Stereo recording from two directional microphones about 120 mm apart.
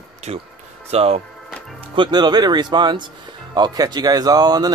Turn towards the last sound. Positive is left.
turn(degrees=-35)  # may be behind; listen again after turning